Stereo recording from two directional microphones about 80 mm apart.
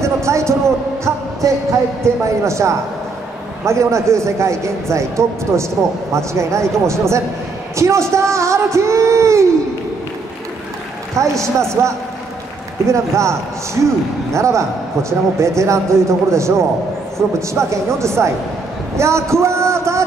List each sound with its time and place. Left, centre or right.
0.0 s a sound: right
2.2 s speech: right
11.1 s speech: right